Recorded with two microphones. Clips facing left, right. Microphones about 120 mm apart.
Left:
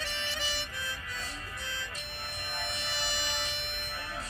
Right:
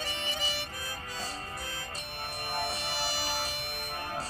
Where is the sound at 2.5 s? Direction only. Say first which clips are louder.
Right 4 dB; 40° right (ahead or behind).